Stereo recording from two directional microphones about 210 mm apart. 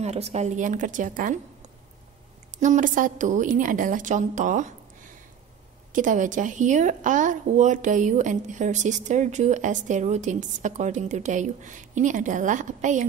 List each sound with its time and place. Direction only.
0.0 s a woman's voice: 30° right (ahead or behind)
2.6 s a woman's voice: 35° right (ahead or behind)
5.9 s a woman's voice: 40° right (ahead or behind)